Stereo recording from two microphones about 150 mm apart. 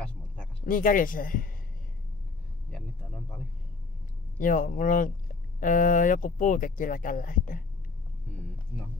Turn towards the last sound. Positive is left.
turn(degrees=65)  # may be behind; listen again after turning